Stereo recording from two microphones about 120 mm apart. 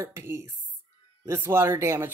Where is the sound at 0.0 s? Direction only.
25° right (ahead or behind).